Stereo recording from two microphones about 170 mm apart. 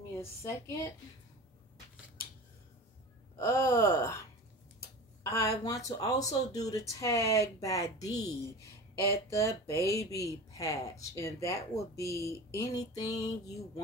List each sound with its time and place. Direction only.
0.2 s speech: 15° left (ahead or behind)
3.3 s speech: 15° left (ahead or behind)
5.2 s a woman's voice: 20° left (ahead or behind)
9.7 s speech: 20° left (ahead or behind)